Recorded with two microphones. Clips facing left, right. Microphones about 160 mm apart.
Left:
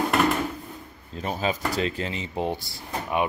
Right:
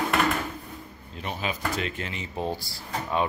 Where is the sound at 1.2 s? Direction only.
35° left (ahead or behind).